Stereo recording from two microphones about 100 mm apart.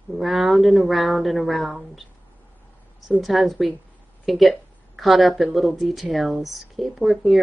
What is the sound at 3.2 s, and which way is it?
Speech, centre (ahead or behind).